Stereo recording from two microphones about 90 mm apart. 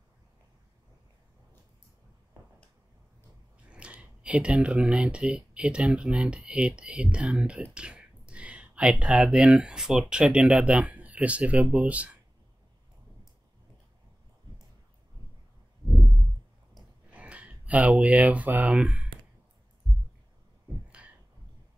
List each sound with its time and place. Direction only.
3.6 s speech: 15° right (ahead or behind)
17.1 s speech: 15° right (ahead or behind)
21.0 s a sound: 15° right (ahead or behind)